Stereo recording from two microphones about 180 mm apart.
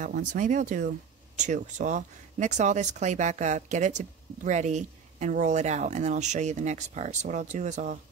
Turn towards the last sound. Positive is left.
turn(degrees=-40)  # may be behind; listen again after turning